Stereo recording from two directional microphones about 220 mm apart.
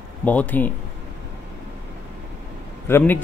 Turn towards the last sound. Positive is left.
turn(degrees=10)  # may be behind; listen again after turning